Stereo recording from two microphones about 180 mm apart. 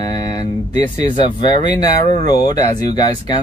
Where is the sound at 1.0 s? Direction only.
25° left (ahead or behind).